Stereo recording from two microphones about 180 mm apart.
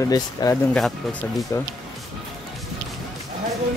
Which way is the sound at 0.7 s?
Centre (ahead or behind).